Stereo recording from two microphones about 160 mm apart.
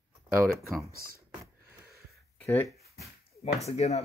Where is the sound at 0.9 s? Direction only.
65° right (ahead or behind).